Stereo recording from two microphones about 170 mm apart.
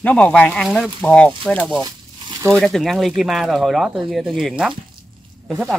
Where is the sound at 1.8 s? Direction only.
20° right (ahead or behind).